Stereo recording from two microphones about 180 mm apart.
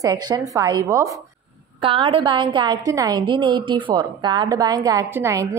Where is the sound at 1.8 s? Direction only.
30° right (ahead or behind).